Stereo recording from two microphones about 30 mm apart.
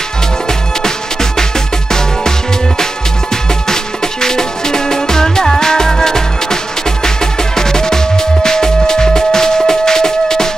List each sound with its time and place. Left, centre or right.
3.6 s music: centre